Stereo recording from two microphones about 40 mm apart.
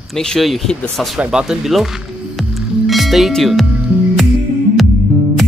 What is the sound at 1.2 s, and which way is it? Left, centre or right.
Speech, centre.